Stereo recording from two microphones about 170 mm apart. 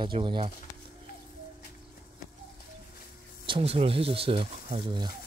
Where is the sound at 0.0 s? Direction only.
30° right (ahead or behind).